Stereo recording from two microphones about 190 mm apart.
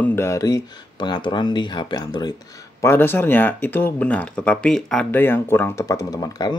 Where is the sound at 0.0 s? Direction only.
15° left (ahead or behind).